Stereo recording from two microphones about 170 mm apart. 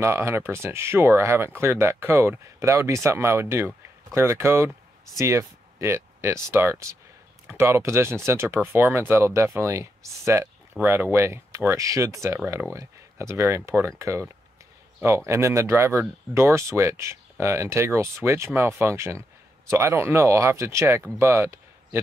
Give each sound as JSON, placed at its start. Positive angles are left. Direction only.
{"t": 0.0, "sound": "speech", "side_deg": -15}